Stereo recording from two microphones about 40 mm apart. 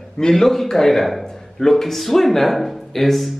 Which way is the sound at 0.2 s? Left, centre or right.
Centre.